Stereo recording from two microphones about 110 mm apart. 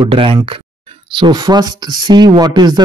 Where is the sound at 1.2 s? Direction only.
40° right (ahead or behind).